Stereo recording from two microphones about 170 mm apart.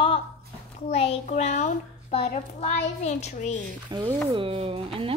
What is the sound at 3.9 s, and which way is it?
A woman's voice, 25° right (ahead or behind).